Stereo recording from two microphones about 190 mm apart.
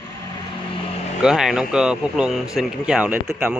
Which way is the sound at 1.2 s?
Centre (ahead or behind).